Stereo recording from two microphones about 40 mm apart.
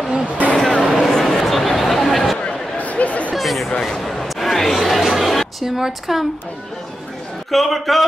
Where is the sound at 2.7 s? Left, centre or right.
Left.